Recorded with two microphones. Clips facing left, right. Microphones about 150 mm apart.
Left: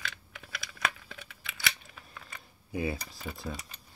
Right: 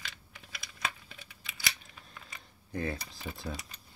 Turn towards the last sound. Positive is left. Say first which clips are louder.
# left 1 dB
turn(degrees=0)  # may be behind; listen again after turning